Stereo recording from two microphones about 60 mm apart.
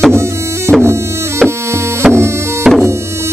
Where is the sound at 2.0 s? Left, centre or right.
Right.